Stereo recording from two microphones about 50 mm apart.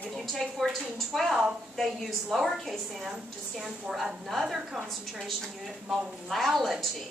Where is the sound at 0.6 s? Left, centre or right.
Centre.